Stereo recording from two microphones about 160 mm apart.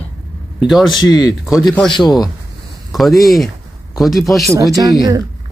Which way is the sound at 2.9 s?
Centre (ahead or behind).